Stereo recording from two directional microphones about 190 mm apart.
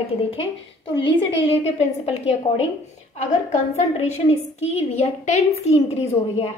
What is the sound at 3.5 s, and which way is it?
A woman's voice, 35° left (ahead or behind).